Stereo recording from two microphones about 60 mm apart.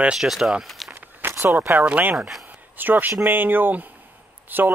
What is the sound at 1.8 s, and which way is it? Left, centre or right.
Speech, right.